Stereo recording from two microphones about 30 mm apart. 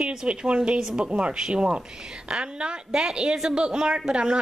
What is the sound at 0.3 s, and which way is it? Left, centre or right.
A woman's voice, right.